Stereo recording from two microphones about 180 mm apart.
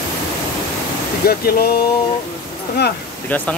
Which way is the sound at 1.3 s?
60° left (ahead or behind).